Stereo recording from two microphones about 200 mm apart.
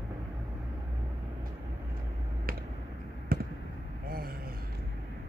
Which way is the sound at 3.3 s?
50° right (ahead or behind).